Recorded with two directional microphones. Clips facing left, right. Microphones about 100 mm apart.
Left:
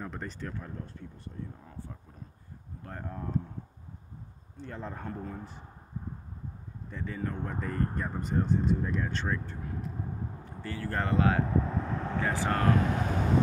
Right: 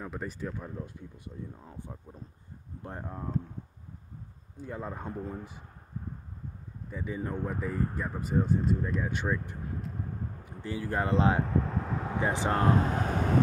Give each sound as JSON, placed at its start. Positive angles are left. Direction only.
{"t": 0.0, "sound": "speech", "side_deg": -5}
{"t": 4.6, "sound": "speech", "side_deg": -10}
{"t": 6.9, "sound": "speech", "side_deg": -10}
{"t": 9.1, "sound": "speech", "side_deg": -15}
{"t": 10.6, "sound": "speech", "side_deg": -15}
{"t": 11.4, "sound": "vehicle", "side_deg": 0}
{"t": 12.2, "sound": "speech", "side_deg": -20}